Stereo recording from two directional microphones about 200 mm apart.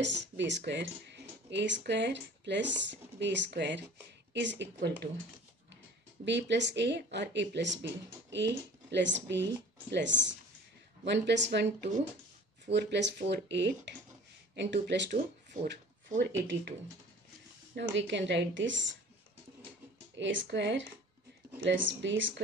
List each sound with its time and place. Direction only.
0.0 s speech: 60° right (ahead or behind)
6.2 s speech: 60° right (ahead or behind)
16.2 s speech: 65° right (ahead or behind)
17.7 s speech: 65° right (ahead or behind)
20.2 s speech: 65° right (ahead or behind)